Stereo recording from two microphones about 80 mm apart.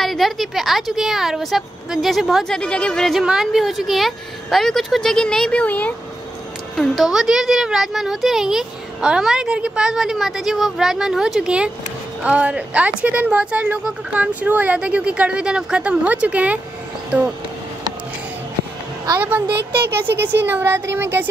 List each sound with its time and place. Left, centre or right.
0.0 s speech: centre
3.2 s speech: centre
6.8 s a woman's voice: centre
19.1 s speech: right